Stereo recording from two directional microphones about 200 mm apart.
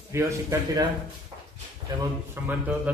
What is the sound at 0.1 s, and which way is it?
Speech, 15° right (ahead or behind).